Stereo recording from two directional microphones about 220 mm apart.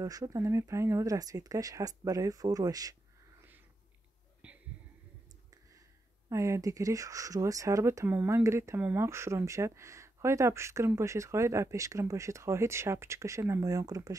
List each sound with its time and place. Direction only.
0.0 s speech: 15° right (ahead or behind)
4.4 s a sound: 5° right (ahead or behind)
6.2 s speech: 15° right (ahead or behind)